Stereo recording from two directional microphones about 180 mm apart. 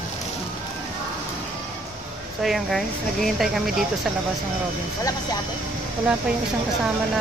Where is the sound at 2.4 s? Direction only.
Centre (ahead or behind).